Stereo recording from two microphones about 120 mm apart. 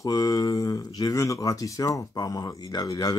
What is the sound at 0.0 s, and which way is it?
Speech, 30° left (ahead or behind).